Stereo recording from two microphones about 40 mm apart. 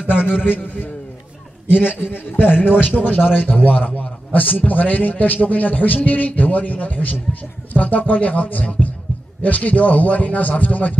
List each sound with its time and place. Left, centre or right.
0.1 s a man's voice: left